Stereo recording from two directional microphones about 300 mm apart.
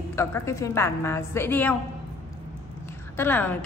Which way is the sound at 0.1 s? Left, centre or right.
Centre.